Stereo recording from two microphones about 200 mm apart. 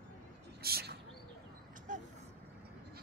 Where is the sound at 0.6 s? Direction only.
50° right (ahead or behind).